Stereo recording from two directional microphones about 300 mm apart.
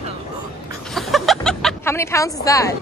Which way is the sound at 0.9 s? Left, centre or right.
Centre.